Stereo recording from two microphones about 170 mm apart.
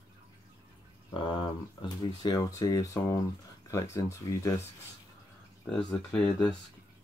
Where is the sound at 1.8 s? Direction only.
20° left (ahead or behind).